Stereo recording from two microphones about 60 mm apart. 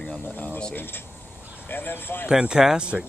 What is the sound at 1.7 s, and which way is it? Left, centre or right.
Speech, left.